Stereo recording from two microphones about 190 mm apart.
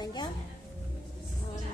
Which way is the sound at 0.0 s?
20° left (ahead or behind).